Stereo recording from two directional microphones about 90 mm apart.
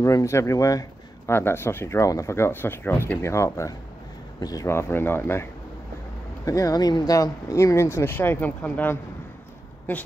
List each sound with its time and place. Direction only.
0.0 s speech: 35° left (ahead or behind); by 3.2 s 20° left (ahead or behind)
3.2 s speech: 30° left (ahead or behind)
4.4 s speech: 45° left (ahead or behind)
4.6 s speech: 30° left (ahead or behind)
6.4 s speech: 40° left (ahead or behind); by 8.9 s 20° left (ahead or behind)